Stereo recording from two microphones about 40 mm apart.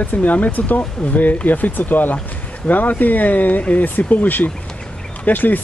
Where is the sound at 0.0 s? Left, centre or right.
Left.